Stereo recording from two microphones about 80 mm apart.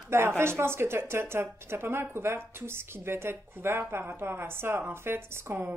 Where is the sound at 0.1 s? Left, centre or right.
Right.